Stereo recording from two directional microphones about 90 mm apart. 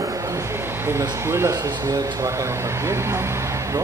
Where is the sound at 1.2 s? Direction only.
30° right (ahead or behind).